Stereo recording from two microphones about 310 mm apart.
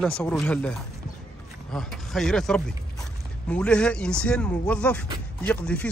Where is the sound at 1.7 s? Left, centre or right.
Centre.